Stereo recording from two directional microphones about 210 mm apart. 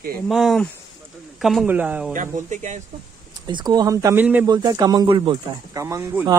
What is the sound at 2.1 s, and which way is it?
Speech, 35° right (ahead or behind).